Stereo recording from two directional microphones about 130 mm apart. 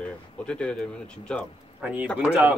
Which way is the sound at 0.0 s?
10° left (ahead or behind).